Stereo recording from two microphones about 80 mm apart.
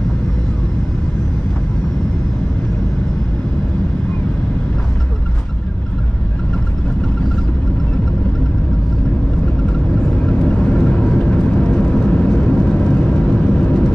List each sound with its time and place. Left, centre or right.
10.0 s vehicle: centre